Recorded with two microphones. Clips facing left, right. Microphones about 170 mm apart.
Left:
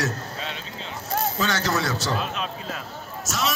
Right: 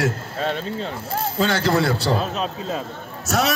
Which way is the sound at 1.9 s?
30° right (ahead or behind).